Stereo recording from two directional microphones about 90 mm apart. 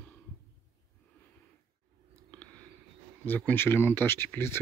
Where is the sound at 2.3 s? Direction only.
15° left (ahead or behind).